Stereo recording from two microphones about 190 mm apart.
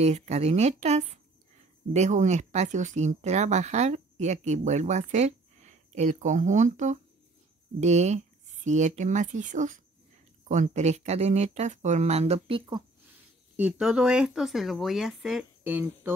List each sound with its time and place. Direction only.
0.0 s speech: 35° right (ahead or behind)
13.6 s speech: 5° right (ahead or behind)